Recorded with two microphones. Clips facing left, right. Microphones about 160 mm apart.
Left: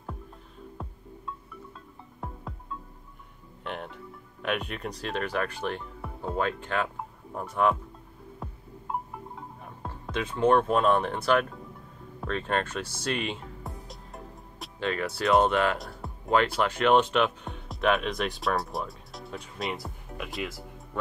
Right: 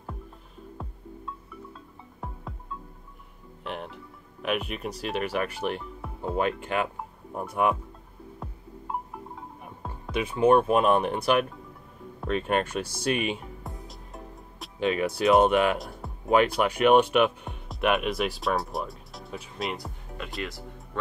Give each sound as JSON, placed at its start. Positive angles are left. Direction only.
{"t": 0.8, "sound": "music", "side_deg": 0}
{"t": 2.1, "sound": "music", "side_deg": 0}
{"t": 3.6, "sound": "speech", "side_deg": -5}
{"t": 5.9, "sound": "music", "side_deg": 0}
{"t": 6.3, "sound": "speech", "side_deg": -15}
{"t": 8.4, "sound": "music", "side_deg": 0}
{"t": 9.6, "sound": "speech", "side_deg": -10}
{"t": 13.7, "sound": "music", "side_deg": 0}
{"t": 14.8, "sound": "speech", "side_deg": -15}